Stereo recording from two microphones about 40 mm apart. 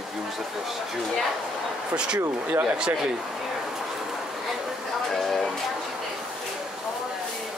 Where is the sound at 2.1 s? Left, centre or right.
Right.